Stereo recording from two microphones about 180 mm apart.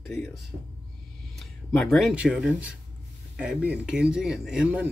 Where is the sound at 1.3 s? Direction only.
Centre (ahead or behind).